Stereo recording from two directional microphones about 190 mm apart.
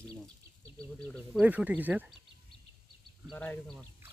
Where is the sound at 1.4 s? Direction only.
10° right (ahead or behind).